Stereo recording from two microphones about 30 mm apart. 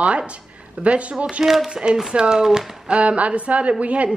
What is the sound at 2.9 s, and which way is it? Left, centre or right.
Speech, right.